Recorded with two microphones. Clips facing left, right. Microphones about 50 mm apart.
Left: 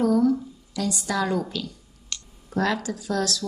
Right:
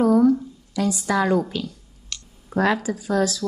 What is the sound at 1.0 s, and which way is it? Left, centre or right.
Speech, right.